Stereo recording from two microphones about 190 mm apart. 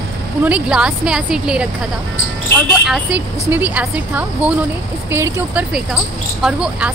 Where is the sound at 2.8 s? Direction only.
5° right (ahead or behind).